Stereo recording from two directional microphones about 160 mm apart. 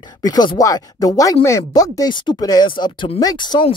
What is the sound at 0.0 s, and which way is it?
Speech, 25° left (ahead or behind).